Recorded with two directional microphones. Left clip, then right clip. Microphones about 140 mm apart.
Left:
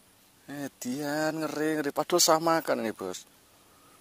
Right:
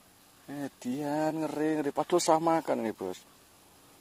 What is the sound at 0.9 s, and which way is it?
Speech, 55° left (ahead or behind).